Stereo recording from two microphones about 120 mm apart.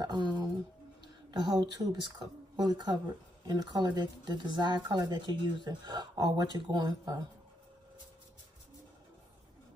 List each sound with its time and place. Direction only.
0.0 s speech: 40° right (ahead or behind)